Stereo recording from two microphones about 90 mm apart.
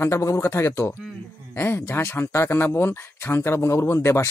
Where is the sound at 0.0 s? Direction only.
35° left (ahead or behind).